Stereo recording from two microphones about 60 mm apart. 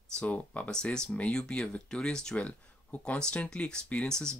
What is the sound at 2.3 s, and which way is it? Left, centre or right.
Speech, left.